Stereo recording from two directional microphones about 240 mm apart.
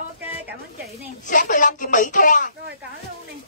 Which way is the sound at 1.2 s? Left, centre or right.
Left.